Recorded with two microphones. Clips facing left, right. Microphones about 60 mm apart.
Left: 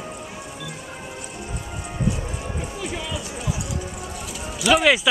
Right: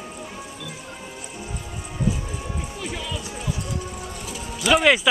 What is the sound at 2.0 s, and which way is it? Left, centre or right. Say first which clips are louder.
Run: even; centre.